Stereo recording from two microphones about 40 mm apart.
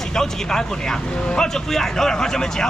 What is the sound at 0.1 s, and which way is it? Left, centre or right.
A man's voice, centre.